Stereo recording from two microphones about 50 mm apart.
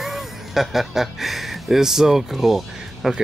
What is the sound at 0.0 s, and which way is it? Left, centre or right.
Speech, centre.